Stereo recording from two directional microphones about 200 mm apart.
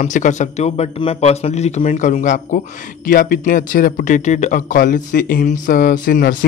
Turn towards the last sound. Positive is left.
turn(degrees=45)  # may be behind; listen again after turning